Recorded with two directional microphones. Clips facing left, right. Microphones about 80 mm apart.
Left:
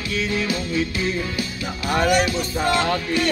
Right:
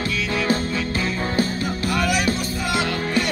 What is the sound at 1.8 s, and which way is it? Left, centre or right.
Music, left.